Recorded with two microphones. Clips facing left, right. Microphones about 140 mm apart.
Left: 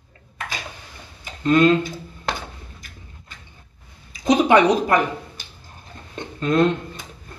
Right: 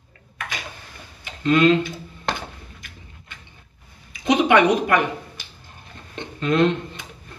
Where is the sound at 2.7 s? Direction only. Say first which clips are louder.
Even; 40° left (ahead or behind).